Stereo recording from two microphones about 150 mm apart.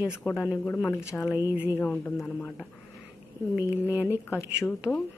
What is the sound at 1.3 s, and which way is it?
Speech, 15° right (ahead or behind).